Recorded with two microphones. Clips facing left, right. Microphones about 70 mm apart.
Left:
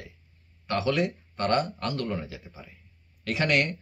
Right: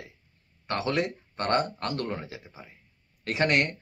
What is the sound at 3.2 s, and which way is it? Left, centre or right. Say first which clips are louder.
Speech: even; right.